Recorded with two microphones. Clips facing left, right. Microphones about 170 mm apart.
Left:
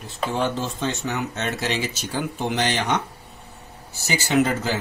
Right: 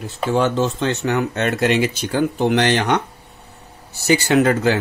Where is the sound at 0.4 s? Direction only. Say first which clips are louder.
Right 7 dB; 70° right (ahead or behind).